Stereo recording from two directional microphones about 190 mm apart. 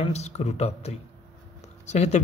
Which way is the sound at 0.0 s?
35° left (ahead or behind).